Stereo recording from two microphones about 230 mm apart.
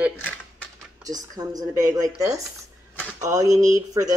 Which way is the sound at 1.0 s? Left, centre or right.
Centre.